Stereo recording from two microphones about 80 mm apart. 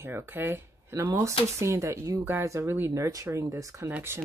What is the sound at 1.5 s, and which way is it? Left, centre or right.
Speech, right.